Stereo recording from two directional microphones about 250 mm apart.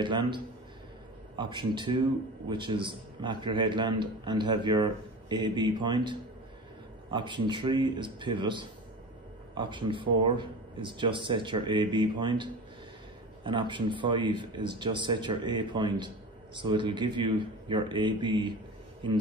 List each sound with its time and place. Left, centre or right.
0.0 s speech: centre